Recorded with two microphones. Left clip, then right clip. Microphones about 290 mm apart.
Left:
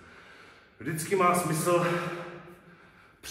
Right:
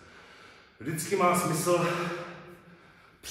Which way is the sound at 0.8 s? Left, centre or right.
Centre.